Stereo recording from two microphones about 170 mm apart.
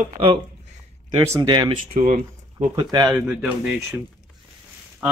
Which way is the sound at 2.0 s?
45° right (ahead or behind).